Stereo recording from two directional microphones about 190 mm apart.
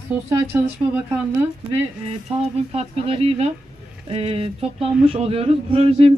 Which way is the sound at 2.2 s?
30° right (ahead or behind).